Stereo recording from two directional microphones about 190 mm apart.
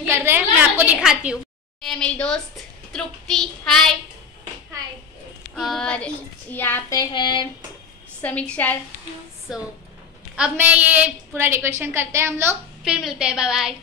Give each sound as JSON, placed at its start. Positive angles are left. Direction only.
{"t": 0.0, "sound": "a woman's voice", "side_deg": -10}
{"t": 5.6, "sound": "child singing", "side_deg": 0}
{"t": 8.2, "sound": "child singing", "side_deg": 5}
{"t": 9.5, "sound": "a woman's voice", "side_deg": -5}